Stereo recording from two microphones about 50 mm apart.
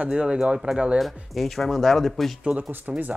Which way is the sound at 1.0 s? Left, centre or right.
Centre.